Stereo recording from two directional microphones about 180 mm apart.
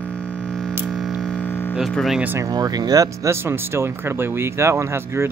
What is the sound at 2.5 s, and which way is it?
Speech, 20° right (ahead or behind).